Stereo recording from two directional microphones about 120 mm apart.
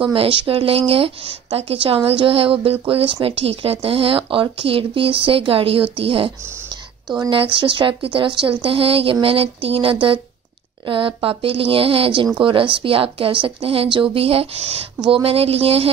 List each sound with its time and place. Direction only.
0.0 s speech: 50° right (ahead or behind)